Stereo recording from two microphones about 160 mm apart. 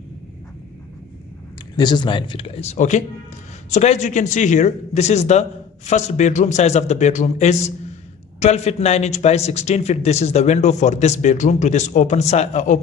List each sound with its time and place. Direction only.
1.8 s a man's voice: 30° left (ahead or behind); by 12.8 s 50° left (ahead or behind)